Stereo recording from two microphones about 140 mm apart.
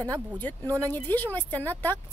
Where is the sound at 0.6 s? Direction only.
25° right (ahead or behind).